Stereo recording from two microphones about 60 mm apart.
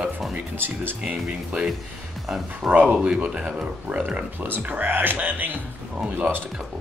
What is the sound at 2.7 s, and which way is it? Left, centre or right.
Speech, right.